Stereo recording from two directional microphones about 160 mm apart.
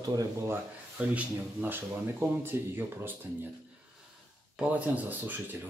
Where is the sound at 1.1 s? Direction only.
10° right (ahead or behind).